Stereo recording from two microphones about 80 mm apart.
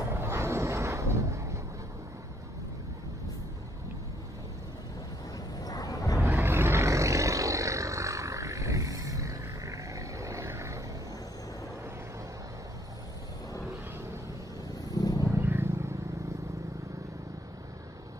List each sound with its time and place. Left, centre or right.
0.1 s vehicle: right
5.6 s a sound: left
6.2 s vehicle: right
14.9 s vehicle: left
15.3 s vehicle: right